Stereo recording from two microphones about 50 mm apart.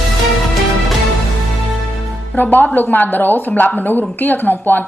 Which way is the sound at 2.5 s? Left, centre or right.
Left.